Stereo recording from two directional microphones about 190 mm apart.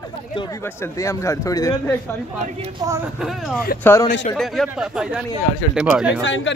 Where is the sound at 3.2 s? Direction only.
Centre (ahead or behind).